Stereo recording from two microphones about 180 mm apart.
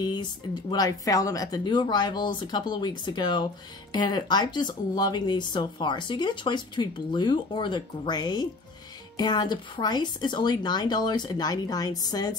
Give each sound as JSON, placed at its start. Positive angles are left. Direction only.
{"t": 0.0, "sound": "speech", "side_deg": 25}